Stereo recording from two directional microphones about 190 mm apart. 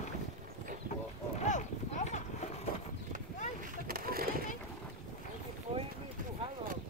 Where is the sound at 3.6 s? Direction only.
50° right (ahead or behind).